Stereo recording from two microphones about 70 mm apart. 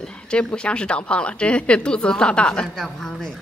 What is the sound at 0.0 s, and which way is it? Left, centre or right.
Speech, centre.